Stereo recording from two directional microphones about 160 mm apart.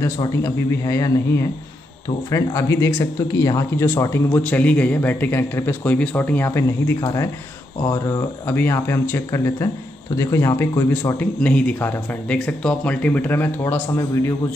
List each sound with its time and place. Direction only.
0.0 s speech: 20° left (ahead or behind)